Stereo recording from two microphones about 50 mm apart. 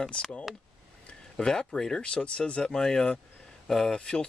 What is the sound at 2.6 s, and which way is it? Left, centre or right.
Speech, centre.